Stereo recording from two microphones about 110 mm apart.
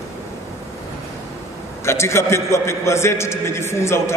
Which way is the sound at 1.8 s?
25° left (ahead or behind).